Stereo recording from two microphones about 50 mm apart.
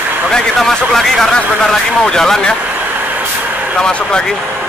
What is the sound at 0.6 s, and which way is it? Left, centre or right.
Speech, centre.